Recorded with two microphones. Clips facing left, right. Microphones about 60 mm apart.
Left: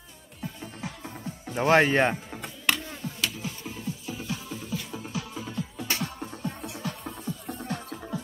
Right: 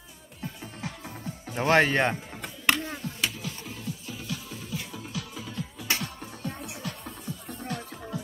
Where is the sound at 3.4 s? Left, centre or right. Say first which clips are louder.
Left 2 dB; left.